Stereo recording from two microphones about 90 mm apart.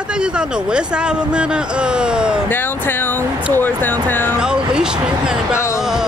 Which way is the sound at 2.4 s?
25° left (ahead or behind).